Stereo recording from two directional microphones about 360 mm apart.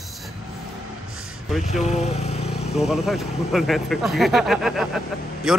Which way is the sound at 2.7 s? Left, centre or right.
Centre.